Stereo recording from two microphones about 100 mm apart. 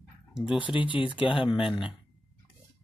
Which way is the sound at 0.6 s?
55° left (ahead or behind).